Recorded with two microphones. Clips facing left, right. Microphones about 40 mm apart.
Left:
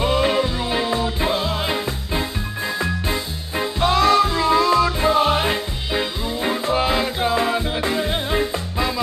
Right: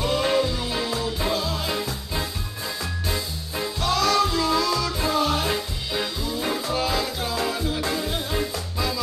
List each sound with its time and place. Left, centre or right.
0.0 s music: left